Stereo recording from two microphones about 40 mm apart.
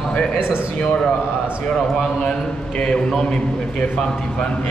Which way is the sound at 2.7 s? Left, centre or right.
Centre.